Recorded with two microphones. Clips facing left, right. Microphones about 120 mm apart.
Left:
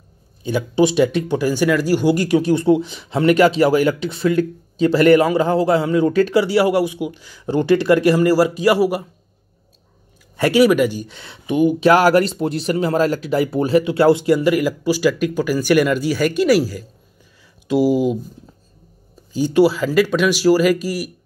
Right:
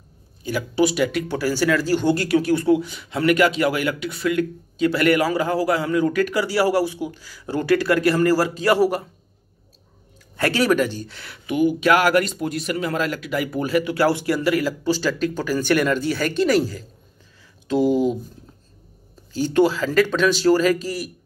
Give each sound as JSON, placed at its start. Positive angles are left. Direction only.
{"t": 0.4, "sound": "speech", "side_deg": 25}
{"t": 10.3, "sound": "speech", "side_deg": 15}
{"t": 19.3, "sound": "speech", "side_deg": 15}